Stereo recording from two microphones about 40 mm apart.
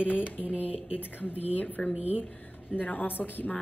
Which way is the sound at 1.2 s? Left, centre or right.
Left.